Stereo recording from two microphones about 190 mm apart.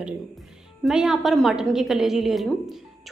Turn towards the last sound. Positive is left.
turn(degrees=0)  # may be behind; listen again after turning